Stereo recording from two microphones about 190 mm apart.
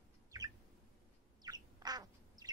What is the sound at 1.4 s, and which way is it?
Bird, 20° right (ahead or behind).